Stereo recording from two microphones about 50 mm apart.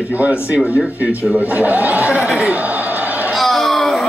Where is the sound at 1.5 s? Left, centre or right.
Right.